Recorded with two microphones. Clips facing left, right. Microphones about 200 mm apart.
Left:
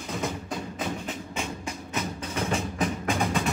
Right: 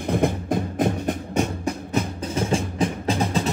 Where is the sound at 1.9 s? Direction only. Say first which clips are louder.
Right 3 dB; 35° right (ahead or behind).